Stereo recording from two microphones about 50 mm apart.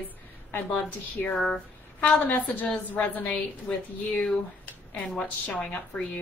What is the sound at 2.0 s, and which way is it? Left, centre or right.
A woman's voice, left.